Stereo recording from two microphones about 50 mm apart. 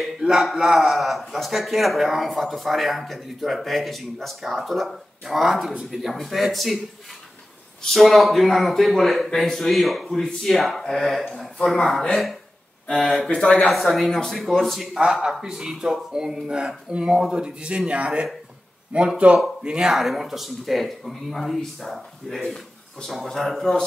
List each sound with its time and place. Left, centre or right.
0.2 s a man's voice: centre
7.8 s a man's voice: centre
13.3 s speech: centre
13.7 s a man's voice: centre
15.2 s speech: centre
19.9 s a man's voice: centre
22.4 s a sound: centre
23.0 s a man's voice: centre